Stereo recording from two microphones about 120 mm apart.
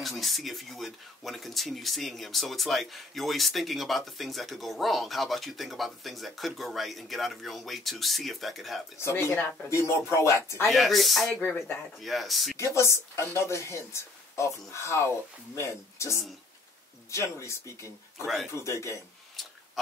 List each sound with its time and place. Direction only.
0.0 s speech: centre (ahead or behind)
8.9 s speech: 20° left (ahead or behind)
10.7 s speech: centre (ahead or behind)
11.4 s speech: 20° left (ahead or behind)
12.0 s speech: centre (ahead or behind)
12.5 s speech: 25° left (ahead or behind)
18.2 s speech: centre (ahead or behind)
18.5 s speech: 25° left (ahead or behind)
19.4 s a sound: centre (ahead or behind)